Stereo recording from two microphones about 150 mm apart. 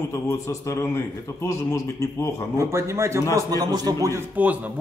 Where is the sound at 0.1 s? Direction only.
20° left (ahead or behind).